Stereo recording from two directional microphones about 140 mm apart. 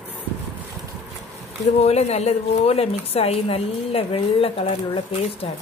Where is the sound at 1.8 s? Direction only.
50° left (ahead or behind).